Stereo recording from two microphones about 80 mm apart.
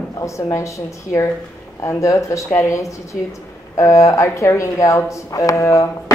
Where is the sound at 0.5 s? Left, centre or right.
Left.